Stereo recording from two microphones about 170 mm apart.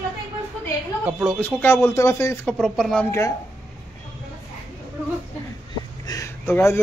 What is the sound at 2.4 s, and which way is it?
Speech, 5° left (ahead or behind).